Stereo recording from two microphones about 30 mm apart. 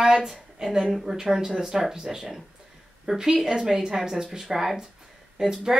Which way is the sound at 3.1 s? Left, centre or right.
Right.